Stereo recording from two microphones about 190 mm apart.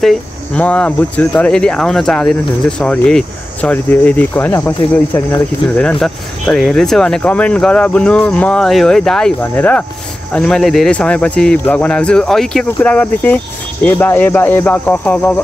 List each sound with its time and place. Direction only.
0.6 s speech: 10° left (ahead or behind)